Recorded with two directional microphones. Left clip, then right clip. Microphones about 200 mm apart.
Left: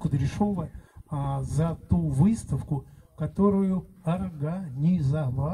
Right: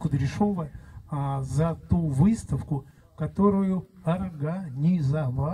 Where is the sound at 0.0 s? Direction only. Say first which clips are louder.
Right 2 dB; 30° left (ahead or behind).